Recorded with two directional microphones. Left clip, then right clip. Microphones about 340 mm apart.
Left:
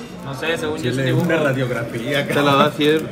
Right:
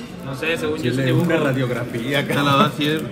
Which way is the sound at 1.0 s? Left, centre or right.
Right.